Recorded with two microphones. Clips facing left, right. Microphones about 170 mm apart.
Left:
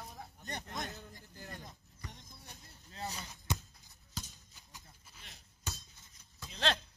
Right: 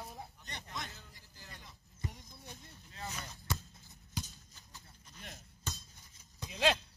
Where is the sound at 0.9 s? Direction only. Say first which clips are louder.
Left 7 dB; 60° left (ahead or behind).